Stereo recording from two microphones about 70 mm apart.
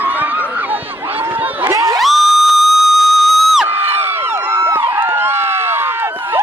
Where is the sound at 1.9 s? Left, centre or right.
Centre.